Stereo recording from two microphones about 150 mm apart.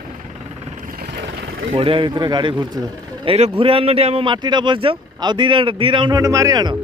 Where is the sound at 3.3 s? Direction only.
40° right (ahead or behind).